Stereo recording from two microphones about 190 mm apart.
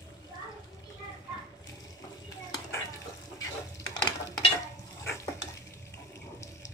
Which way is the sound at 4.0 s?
20° left (ahead or behind).